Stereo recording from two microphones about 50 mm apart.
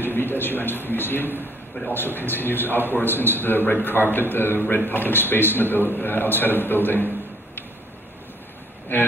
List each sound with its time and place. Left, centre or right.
0.0 s a man's voice: left
8.9 s a man's voice: left